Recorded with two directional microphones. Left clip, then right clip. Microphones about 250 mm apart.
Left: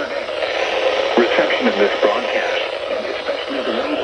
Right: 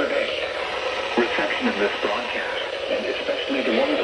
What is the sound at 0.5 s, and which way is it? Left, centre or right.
Radio, left.